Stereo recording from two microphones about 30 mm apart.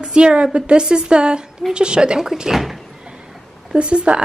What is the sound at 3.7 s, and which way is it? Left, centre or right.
Speech, right.